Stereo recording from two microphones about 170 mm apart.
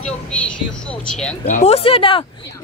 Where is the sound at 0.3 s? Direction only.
5° left (ahead or behind).